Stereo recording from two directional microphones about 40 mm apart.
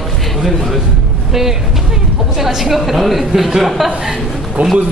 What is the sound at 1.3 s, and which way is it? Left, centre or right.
Vehicle, centre.